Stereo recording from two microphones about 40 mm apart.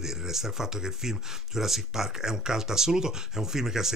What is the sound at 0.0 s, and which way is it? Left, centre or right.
Speech, centre.